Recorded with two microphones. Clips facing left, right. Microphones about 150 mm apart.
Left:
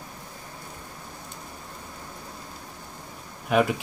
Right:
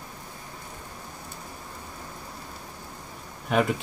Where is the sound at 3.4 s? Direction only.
5° left (ahead or behind).